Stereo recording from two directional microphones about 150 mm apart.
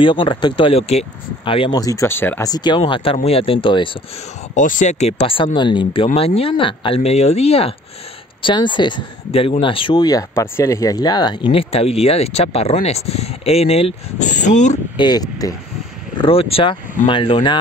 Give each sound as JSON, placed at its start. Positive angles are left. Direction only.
{"t": 0.0, "sound": "speech", "side_deg": 35}
{"t": 1.8, "sound": "speech", "side_deg": 20}
{"t": 2.5, "sound": "speech", "side_deg": 30}
{"t": 4.6, "sound": "speech", "side_deg": 60}
{"t": 15.0, "sound": "speech", "side_deg": 25}
{"t": 16.2, "sound": "speech", "side_deg": 40}